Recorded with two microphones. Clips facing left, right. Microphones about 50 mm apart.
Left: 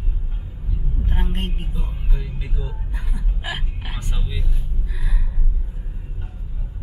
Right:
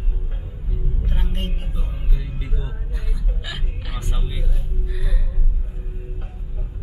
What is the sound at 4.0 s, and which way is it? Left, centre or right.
Vehicle, centre.